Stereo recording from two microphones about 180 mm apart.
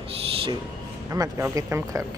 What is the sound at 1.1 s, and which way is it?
Speech, 20° right (ahead or behind).